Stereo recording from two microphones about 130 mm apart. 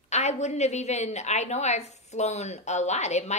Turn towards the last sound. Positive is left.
turn(degrees=60)  # may be behind; listen again after turning